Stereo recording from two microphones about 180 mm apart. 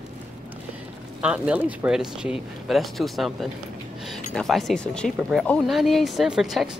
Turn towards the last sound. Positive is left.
turn(degrees=0)  # may be behind; listen again after turning